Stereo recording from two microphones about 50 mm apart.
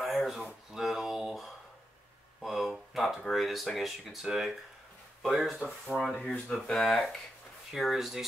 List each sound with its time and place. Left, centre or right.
0.0 s a sound: centre
2.4 s speech: centre
6.2 s speech: left
6.8 s speech: centre